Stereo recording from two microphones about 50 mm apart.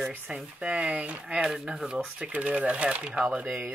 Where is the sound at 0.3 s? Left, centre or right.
Centre.